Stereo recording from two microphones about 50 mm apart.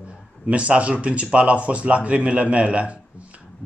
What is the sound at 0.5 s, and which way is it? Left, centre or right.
Speech, right.